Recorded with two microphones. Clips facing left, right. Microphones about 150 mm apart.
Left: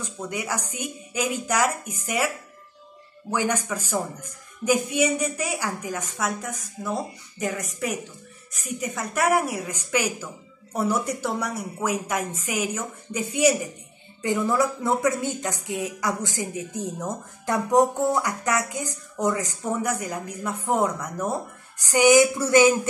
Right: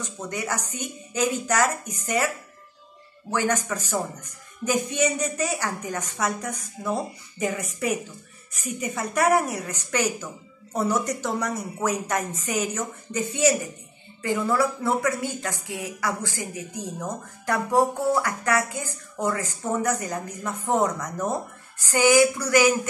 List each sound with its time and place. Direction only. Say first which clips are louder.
0.0 s a woman's voice: even; 10° left (ahead or behind)